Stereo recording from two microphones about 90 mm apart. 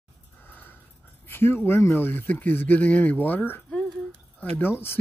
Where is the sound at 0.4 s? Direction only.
20° left (ahead or behind).